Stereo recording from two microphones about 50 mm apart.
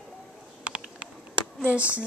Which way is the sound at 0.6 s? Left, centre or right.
Right.